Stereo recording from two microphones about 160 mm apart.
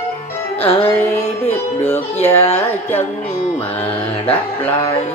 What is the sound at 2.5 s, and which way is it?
Speech, 10° left (ahead or behind).